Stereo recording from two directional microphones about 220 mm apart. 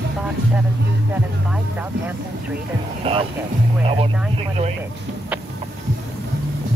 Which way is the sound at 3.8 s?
25° right (ahead or behind).